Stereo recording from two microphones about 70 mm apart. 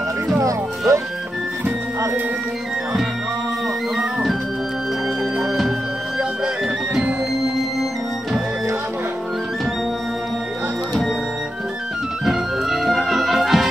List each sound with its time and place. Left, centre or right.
0.4 s speech: right
3.9 s music: centre
12.3 s music: centre